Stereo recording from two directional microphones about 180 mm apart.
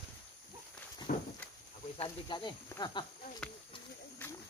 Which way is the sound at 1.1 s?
50° left (ahead or behind).